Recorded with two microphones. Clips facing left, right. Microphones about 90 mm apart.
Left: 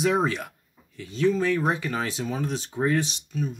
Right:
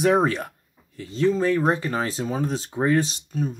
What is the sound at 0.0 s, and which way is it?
Speech, 50° right (ahead or behind).